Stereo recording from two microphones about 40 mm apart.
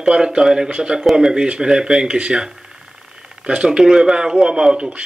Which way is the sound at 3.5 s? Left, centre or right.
Right.